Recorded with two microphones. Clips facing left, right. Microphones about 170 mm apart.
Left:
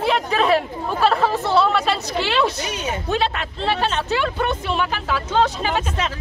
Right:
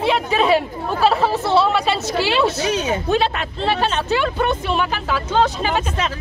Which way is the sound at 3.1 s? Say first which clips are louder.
Right 3 dB; 10° right (ahead or behind).